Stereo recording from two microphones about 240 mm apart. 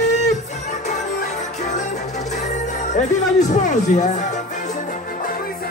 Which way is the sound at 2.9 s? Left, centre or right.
Left.